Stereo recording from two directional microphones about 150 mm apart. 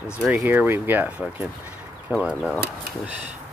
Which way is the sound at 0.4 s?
15° right (ahead or behind).